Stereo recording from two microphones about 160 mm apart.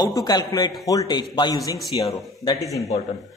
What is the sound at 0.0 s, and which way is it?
A man's voice, 25° left (ahead or behind).